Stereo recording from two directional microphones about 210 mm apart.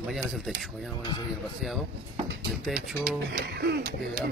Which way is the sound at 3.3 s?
50° right (ahead or behind).